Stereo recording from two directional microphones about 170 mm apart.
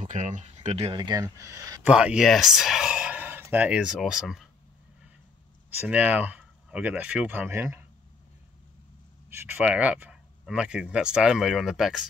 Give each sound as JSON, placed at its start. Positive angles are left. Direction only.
{"t": 0.0, "sound": "speech", "side_deg": -45}
{"t": 1.9, "sound": "speech", "side_deg": -5}
{"t": 5.8, "sound": "speech", "side_deg": -10}
{"t": 9.3, "sound": "speech", "side_deg": -10}